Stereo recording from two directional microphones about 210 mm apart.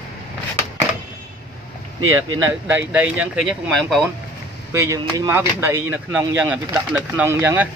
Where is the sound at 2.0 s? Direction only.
75° right (ahead or behind).